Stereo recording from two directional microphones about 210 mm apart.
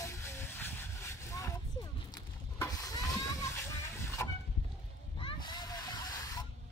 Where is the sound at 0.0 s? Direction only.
15° left (ahead or behind).